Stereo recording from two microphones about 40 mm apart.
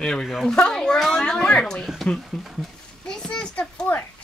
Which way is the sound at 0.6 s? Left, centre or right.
Centre.